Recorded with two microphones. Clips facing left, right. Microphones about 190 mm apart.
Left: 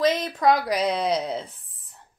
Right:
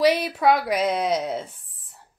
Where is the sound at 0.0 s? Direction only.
10° right (ahead or behind).